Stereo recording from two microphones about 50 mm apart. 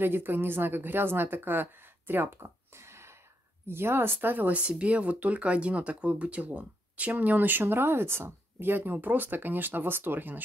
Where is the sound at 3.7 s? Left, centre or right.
Right.